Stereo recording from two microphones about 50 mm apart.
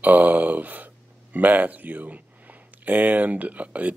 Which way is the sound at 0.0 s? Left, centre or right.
Right.